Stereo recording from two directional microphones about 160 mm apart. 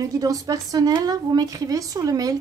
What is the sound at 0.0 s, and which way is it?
A woman's voice, 20° right (ahead or behind).